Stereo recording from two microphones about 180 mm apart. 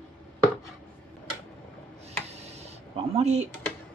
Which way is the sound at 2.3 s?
35° right (ahead or behind).